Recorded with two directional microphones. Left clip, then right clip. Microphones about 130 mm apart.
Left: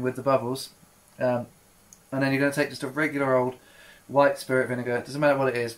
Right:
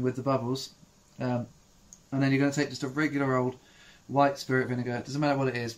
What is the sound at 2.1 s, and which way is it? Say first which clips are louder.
Speech: left 3 dB; 5° right (ahead or behind).